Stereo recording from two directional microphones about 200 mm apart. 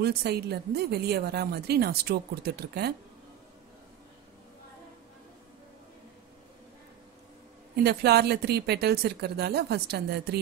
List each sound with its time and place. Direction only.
0.0 s a woman's voice: 55° right (ahead or behind)
7.8 s a woman's voice: 55° right (ahead or behind)